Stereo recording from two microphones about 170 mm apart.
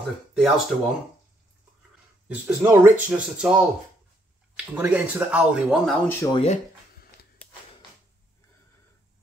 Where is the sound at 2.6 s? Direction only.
15° right (ahead or behind).